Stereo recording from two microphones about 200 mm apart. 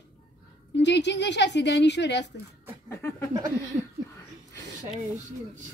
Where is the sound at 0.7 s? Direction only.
60° left (ahead or behind).